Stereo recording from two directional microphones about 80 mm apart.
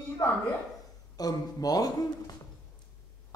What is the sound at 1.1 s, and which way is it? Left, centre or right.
A man's voice, left.